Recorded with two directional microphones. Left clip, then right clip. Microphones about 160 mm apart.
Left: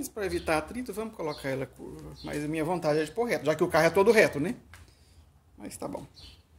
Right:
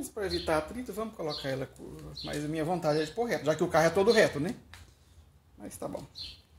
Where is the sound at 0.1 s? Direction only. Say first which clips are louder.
Left 1 dB; 20° left (ahead or behind).